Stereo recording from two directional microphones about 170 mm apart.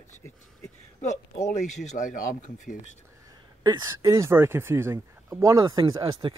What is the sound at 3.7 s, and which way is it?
Speech, 20° right (ahead or behind).